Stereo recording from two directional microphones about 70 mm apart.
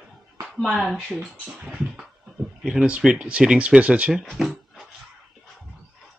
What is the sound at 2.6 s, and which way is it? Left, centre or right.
Speech, centre.